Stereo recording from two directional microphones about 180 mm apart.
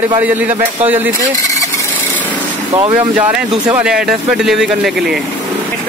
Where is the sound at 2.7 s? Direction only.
30° right (ahead or behind).